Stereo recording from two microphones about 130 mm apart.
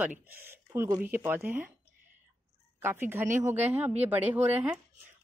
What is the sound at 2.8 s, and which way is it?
A woman's voice, 15° right (ahead or behind).